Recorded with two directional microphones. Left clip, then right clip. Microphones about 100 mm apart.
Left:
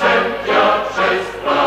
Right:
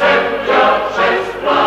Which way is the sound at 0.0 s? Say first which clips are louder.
Right 2 dB; 35° right (ahead or behind).